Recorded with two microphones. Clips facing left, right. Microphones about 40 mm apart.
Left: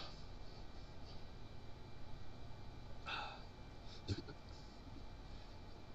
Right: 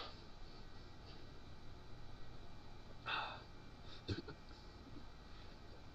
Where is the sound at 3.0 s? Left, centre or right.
Centre.